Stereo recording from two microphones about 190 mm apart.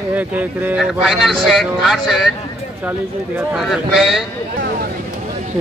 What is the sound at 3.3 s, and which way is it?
Speech, centre (ahead or behind).